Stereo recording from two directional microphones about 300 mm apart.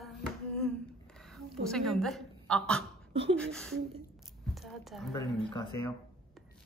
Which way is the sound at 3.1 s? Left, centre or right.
Centre.